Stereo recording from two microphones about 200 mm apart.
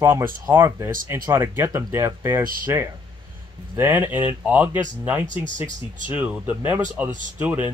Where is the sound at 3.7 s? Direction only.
10° right (ahead or behind).